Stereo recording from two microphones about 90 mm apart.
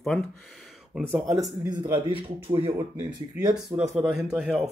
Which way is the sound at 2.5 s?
75° right (ahead or behind).